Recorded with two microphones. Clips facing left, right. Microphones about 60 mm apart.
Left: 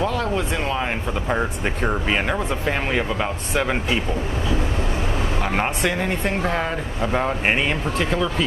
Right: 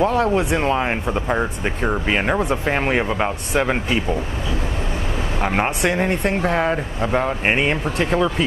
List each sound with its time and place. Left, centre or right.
0.0 s speech: right
0.3 s speech: centre
1.3 s speech: centre
3.5 s speech: centre
5.4 s speech: centre
5.9 s speech: right
7.1 s speech: centre
7.6 s speech: right